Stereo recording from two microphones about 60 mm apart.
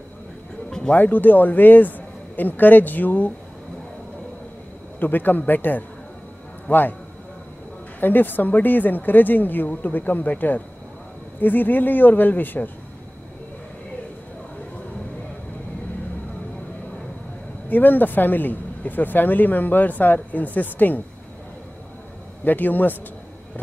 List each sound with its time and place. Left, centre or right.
0.7 s music: centre
0.9 s speech: left
5.0 s speech: left
8.0 s speech: left
17.6 s speech: left
22.4 s speech: left